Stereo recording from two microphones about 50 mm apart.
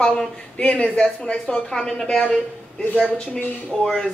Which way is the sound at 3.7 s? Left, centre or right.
Centre.